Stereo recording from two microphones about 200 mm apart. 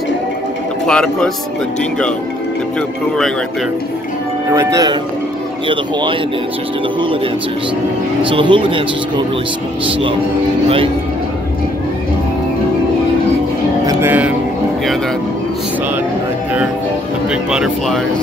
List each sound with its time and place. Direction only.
0.8 s speech: 5° left (ahead or behind)
4.5 s speech: 15° right (ahead or behind)
8.2 s speech: 25° right (ahead or behind)
13.8 s music: 10° right (ahead or behind)
17.3 s speech: 5° right (ahead or behind)